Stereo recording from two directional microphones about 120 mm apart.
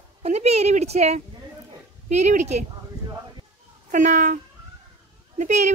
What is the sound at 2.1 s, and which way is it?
Speech, 80° right.